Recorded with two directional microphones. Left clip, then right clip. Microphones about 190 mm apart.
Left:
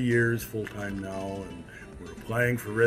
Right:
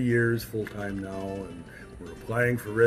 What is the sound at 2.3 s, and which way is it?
Speech, 15° left (ahead or behind).